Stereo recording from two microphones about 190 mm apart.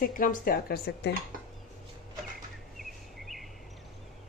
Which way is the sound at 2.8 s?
Centre (ahead or behind).